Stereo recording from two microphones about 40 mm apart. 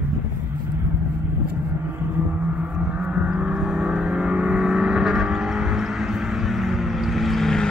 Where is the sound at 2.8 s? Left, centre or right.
Right.